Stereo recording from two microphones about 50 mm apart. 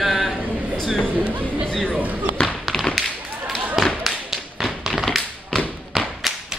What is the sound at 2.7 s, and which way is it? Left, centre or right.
Thump, centre.